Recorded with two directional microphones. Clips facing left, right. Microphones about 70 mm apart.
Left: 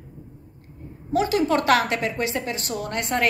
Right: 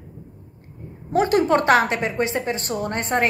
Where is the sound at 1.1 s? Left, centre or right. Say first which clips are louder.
Right 3 dB; right.